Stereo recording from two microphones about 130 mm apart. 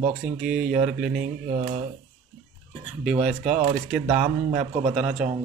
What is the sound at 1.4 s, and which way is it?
Speech, 60° right (ahead or behind).